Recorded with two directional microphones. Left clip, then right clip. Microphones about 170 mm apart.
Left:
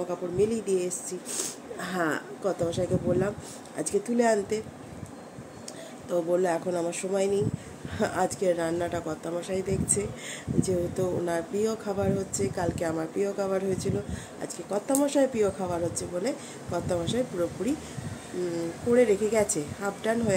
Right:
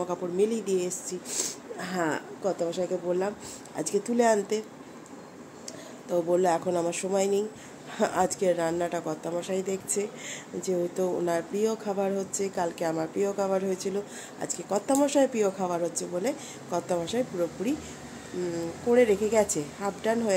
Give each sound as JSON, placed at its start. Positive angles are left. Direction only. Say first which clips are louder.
{"t": 0.1, "sound": "speech", "louder": "left 1 dB", "side_deg": -15}
{"t": 3.7, "sound": "speech", "louder": "even", "side_deg": -15}
{"t": 6.0, "sound": "speech", "louder": "right 1 dB", "side_deg": -10}
{"t": 18.9, "sound": "speech", "louder": "even", "side_deg": -10}